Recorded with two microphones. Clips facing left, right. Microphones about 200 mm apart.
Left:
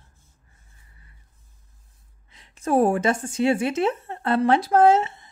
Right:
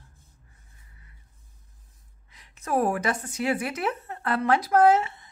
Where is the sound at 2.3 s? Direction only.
30° left (ahead or behind).